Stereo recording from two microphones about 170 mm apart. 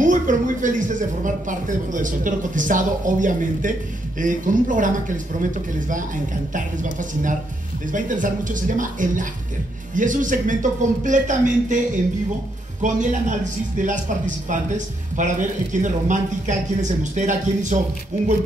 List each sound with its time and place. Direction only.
0.0 s speech: 50° right (ahead or behind)
12.8 s speech: 45° right (ahead or behind)